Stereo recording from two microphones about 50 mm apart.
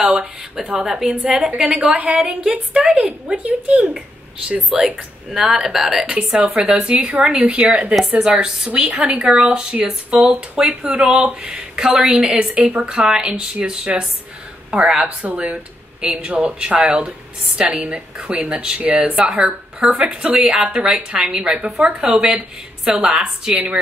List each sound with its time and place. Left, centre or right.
0.0 s a woman's voice: centre
5.3 s a woman's voice: centre
6.0 s a woman's voice: right
9.2 s a woman's voice: centre
12.5 s a woman's voice: right
12.9 s a woman's voice: centre
18.8 s speech: right
19.1 s a woman's voice: centre